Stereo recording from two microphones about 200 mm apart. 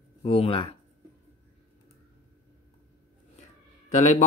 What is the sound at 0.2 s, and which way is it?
Speech, 30° left (ahead or behind).